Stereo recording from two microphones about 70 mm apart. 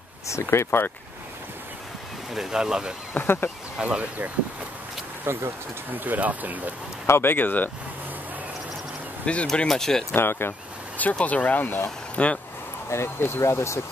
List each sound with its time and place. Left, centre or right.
0.3 s speech: left
2.3 s speech: centre
3.2 s speech: left
3.8 s speech: right
5.2 s speech: right
5.9 s speech: right
7.1 s speech: left
9.2 s speech: centre
10.1 s speech: left
11.0 s speech: left
12.9 s speech: left